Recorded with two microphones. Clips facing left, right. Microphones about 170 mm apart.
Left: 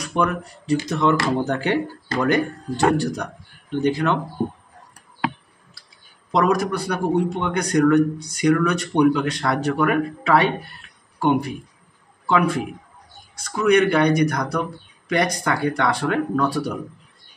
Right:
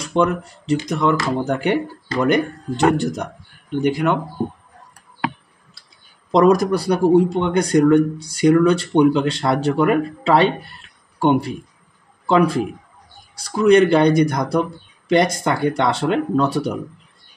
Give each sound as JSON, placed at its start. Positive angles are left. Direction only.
{"t": 0.0, "sound": "a man's voice", "side_deg": -25}
{"t": 6.3, "sound": "a man's voice", "side_deg": -35}